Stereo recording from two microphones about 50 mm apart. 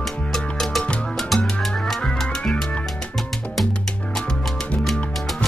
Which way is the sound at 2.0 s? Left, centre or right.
Centre.